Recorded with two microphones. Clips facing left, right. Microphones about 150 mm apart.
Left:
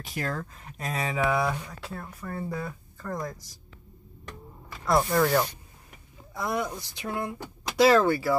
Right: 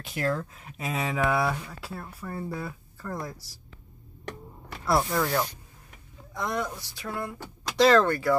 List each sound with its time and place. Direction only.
0.0 s speech: centre (ahead or behind)
4.8 s speech: 5° right (ahead or behind); by 7.3 s 20° left (ahead or behind)
7.7 s speech: 10° left (ahead or behind)